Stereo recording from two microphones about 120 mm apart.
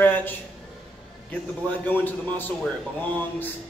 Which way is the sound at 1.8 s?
15° left (ahead or behind).